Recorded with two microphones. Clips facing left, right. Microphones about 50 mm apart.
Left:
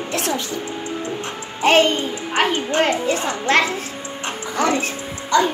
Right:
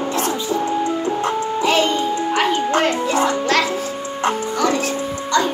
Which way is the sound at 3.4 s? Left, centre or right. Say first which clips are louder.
Even; left.